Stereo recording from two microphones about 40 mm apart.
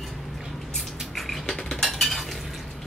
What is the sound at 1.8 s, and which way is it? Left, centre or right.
Cutlery, centre.